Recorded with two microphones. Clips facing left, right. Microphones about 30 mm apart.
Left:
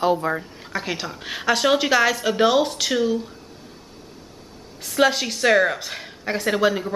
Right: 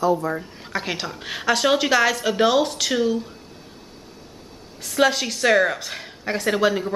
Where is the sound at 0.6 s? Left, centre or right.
Centre.